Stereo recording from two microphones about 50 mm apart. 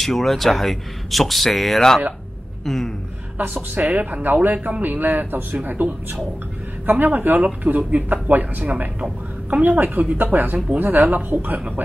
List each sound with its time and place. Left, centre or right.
0.0 s speech: centre
2.6 s a sound: centre
3.3 s a woman's voice: right